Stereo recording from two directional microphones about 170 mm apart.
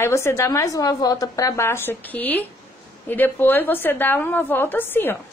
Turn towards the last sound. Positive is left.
turn(degrees=10)  # may be behind; listen again after turning